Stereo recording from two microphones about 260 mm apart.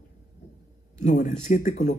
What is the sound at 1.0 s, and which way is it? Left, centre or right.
Speech, left.